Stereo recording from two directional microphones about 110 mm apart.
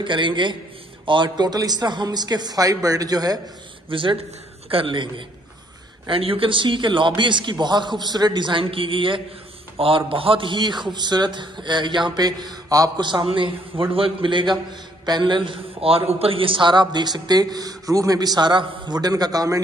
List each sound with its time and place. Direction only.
0.0 s a man's voice: 45° right (ahead or behind)
3.9 s a man's voice: 50° right (ahead or behind); by 19.6 s 35° right (ahead or behind)